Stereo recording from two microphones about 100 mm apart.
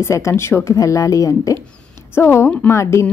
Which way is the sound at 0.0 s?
30° left (ahead or behind).